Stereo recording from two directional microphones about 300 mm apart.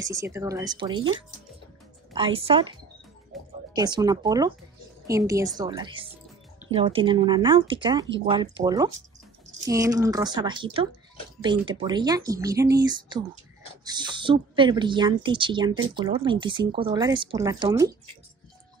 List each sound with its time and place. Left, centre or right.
0.0 s speech: centre
2.1 s speech: centre
3.3 s music: centre
3.7 s speech: centre